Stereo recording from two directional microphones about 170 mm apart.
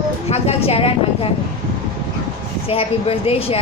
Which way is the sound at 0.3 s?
35° left (ahead or behind).